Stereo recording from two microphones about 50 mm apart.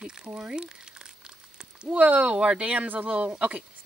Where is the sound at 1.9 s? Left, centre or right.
Right.